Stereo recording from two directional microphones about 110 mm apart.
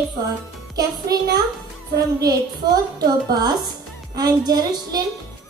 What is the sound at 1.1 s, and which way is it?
Speech, 35° right (ahead or behind).